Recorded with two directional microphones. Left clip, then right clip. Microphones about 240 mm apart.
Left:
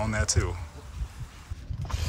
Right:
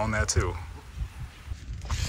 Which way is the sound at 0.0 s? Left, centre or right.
Centre.